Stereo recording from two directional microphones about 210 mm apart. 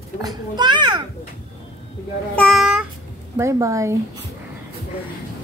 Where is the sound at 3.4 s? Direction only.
15° right (ahead or behind).